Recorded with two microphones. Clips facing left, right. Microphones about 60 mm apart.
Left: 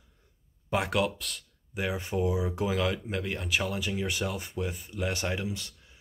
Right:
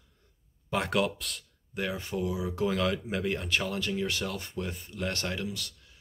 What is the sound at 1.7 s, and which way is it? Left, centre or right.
Speech, centre.